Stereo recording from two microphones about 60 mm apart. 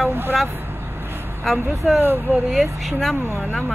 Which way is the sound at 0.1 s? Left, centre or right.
Right.